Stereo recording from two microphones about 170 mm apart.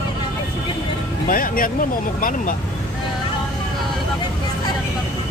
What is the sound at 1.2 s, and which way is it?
Speech, 55° left (ahead or behind).